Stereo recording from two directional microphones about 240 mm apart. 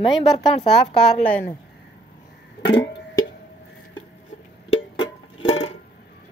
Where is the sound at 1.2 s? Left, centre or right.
Centre.